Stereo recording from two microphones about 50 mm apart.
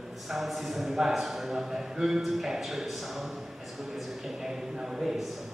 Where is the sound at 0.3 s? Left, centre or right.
Centre.